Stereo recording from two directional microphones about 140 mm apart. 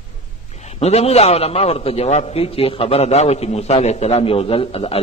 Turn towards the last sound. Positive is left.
turn(degrees=45)  # may be behind; listen again after turning